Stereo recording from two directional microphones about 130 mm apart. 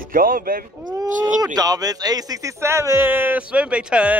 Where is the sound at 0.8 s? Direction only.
30° right (ahead or behind).